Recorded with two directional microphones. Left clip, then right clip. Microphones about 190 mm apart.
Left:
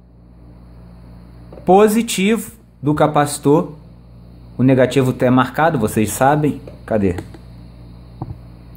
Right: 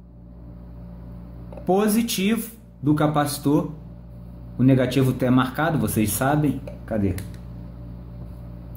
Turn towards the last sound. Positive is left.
turn(degrees=50)  # may be behind; listen again after turning